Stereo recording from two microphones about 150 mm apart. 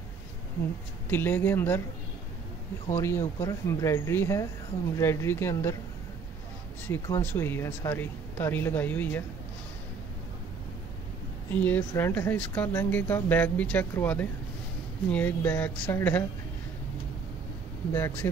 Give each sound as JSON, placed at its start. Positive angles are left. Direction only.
{"t": 1.1, "sound": "speech", "side_deg": 15}
{"t": 2.9, "sound": "speech", "side_deg": 15}
{"t": 6.9, "sound": "speech", "side_deg": 20}
{"t": 11.5, "sound": "speech", "side_deg": 10}
{"t": 17.9, "sound": "speech", "side_deg": 15}